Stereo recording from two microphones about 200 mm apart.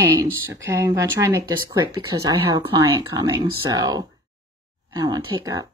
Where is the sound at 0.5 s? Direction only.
15° right (ahead or behind).